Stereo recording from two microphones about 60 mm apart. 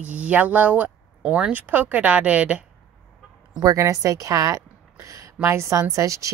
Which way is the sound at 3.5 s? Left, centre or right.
Right.